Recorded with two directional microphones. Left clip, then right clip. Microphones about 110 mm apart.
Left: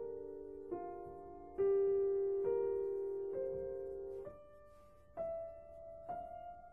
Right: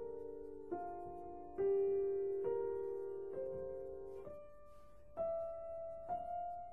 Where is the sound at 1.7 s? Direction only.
15° right (ahead or behind).